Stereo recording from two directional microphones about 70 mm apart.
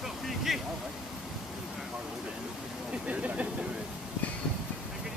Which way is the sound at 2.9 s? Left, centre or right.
Centre.